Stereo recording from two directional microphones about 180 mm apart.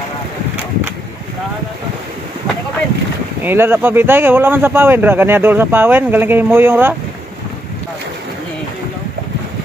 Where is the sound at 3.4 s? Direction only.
10° right (ahead or behind).